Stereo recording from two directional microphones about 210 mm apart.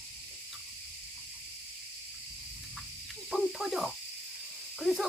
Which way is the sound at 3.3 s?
Centre (ahead or behind).